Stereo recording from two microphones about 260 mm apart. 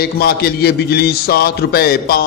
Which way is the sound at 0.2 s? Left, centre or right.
Left.